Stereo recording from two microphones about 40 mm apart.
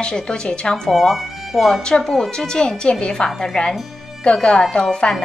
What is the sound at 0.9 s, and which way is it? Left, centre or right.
Speech, centre.